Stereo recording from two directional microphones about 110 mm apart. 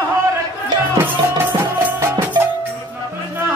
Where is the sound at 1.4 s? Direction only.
20° right (ahead or behind).